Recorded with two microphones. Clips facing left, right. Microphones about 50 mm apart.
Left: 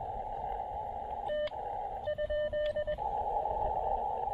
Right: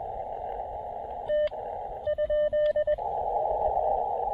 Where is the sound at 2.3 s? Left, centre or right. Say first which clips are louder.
Right 10 dB; centre.